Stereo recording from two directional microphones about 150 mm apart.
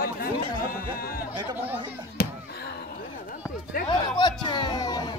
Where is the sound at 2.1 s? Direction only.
90° left.